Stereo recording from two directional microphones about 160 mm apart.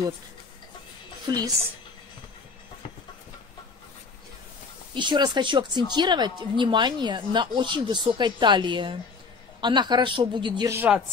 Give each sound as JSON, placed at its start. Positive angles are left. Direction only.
{"t": 1.3, "sound": "speech", "side_deg": -20}
{"t": 4.9, "sound": "speech", "side_deg": -30}
{"t": 10.7, "sound": "speech", "side_deg": -10}